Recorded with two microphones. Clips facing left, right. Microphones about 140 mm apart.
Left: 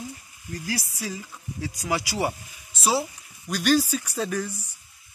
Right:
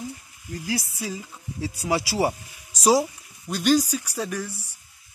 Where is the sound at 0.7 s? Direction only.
25° right (ahead or behind).